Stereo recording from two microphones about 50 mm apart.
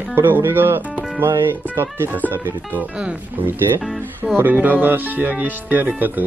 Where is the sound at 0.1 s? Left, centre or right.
Right.